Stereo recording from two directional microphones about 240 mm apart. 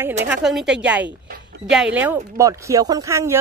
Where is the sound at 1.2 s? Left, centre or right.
Right.